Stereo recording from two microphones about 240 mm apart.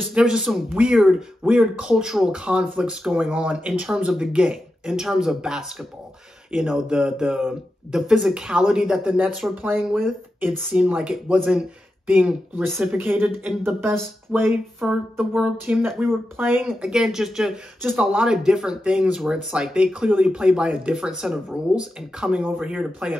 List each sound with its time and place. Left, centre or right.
0.0 s speech: centre